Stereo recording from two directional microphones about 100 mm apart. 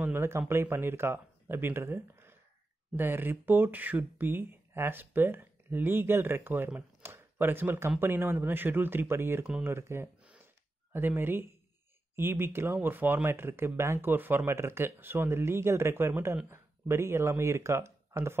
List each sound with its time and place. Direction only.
0.0 s speech: 25° right (ahead or behind)
10.4 s a sound: 20° right (ahead or behind)
12.2 s speech: 25° right (ahead or behind)